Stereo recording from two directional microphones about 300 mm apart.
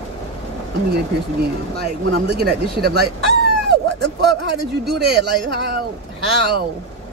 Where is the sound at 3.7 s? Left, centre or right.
Right.